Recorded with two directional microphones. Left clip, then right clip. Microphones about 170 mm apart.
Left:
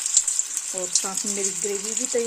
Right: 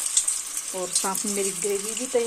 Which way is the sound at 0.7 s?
20° left (ahead or behind).